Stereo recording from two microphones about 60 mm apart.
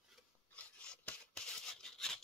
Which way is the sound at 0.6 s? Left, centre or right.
Left.